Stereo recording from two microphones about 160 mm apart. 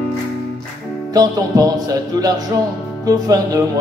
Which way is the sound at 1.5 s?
25° right (ahead or behind).